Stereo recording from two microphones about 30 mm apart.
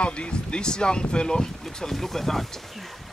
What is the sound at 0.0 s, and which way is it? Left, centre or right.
Speech, left.